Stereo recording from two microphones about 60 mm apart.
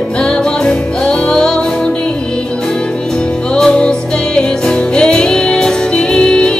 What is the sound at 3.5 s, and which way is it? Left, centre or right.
Music, centre.